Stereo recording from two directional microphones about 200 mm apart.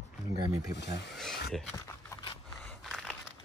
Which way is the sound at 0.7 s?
60° left (ahead or behind).